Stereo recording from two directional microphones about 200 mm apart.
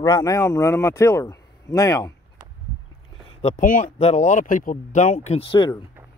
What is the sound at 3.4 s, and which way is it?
Speech, 40° left (ahead or behind).